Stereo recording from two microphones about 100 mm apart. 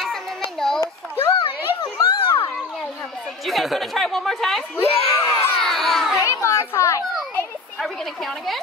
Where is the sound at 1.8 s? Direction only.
45° left (ahead or behind).